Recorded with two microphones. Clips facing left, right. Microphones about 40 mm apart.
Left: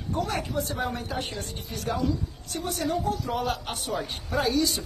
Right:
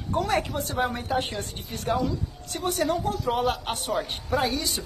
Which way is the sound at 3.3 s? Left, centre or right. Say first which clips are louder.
Right 4 dB; right.